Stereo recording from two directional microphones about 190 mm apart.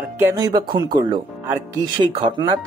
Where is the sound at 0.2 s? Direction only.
15° right (ahead or behind).